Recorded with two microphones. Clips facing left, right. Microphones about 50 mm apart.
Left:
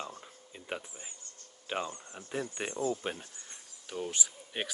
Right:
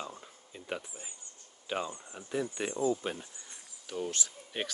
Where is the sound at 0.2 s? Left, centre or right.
Centre.